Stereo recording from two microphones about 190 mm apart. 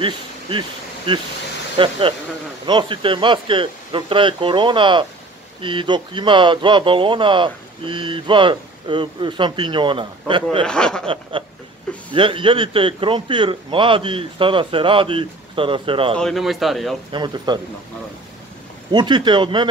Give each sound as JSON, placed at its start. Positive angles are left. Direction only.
{"t": 0.0, "sound": "speech", "side_deg": -25}
{"t": 10.6, "sound": "a man's voice", "side_deg": 5}
{"t": 12.1, "sound": "speech", "side_deg": -25}
{"t": 16.2, "sound": "a man's voice", "side_deg": 0}
{"t": 17.1, "sound": "speech", "side_deg": -25}
{"t": 18.9, "sound": "speech", "side_deg": -25}